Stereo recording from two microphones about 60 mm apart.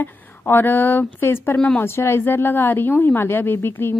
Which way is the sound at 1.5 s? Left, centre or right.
Centre.